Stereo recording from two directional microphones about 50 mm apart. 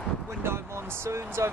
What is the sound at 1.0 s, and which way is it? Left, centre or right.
Speech, right.